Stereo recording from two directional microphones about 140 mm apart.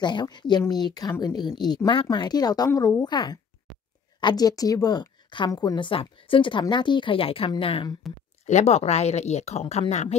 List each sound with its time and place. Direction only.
0.0 s a woman's voice: 30° left (ahead or behind)
8.5 s speech: 55° left (ahead or behind)